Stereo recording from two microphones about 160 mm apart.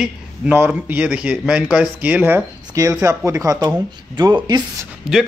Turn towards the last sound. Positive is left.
turn(degrees=-5)  # may be behind; listen again after turning